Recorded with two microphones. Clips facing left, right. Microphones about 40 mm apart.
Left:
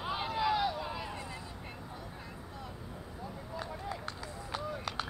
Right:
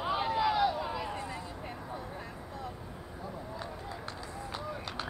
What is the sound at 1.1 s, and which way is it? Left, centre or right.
Vehicle, right.